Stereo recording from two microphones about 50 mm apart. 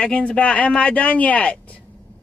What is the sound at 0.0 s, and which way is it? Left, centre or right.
Speech, left.